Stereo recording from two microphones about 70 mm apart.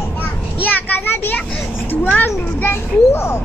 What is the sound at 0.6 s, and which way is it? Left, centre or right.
Children playing, left.